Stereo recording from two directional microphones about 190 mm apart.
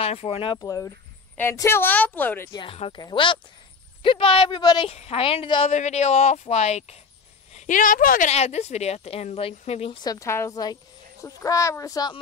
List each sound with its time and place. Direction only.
0.0 s a woman's voice: 30° left (ahead or behind); by 2.5 s 10° left (ahead or behind)
2.5 s speech: 30° left (ahead or behind)
10.0 s a woman's voice: 15° left (ahead or behind)